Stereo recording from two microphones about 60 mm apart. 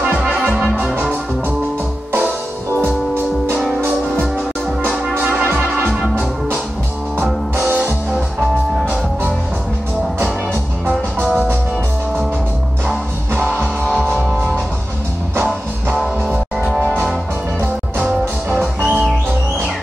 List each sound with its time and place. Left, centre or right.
5.1 s music: right
7.5 s music: right
13.6 s music: centre
16.5 s music: centre
18.5 s music: centre